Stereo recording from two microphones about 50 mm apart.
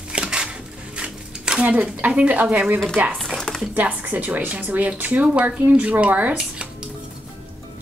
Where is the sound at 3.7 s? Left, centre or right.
Right.